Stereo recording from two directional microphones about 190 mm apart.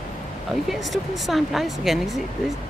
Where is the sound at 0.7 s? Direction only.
Centre (ahead or behind).